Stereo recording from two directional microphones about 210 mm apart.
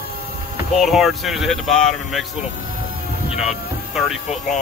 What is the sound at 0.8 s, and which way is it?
Speech, centre (ahead or behind).